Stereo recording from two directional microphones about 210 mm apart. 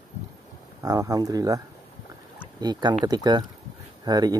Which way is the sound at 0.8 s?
15° right (ahead or behind).